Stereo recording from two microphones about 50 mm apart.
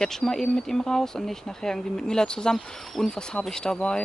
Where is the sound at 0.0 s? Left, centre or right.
Centre.